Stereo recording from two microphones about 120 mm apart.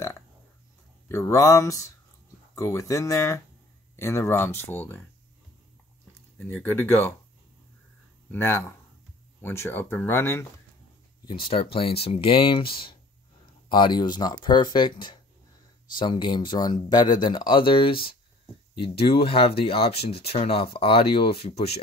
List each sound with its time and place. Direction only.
1.0 s speech: 25° left (ahead or behind)
6.3 s speech: 15° left (ahead or behind)
8.3 s speech: 20° left (ahead or behind)
11.2 s speech: 45° left (ahead or behind)